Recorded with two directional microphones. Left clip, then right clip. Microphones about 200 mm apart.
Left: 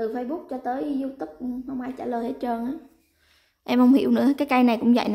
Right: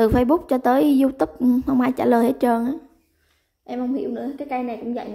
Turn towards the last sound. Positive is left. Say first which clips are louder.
# left 7 dB
turn(degrees=25)  # may be behind; listen again after turning